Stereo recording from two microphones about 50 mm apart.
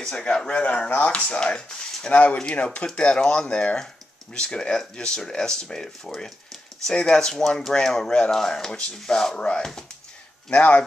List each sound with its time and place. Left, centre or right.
0.0 s speech: centre
10.5 s speech: left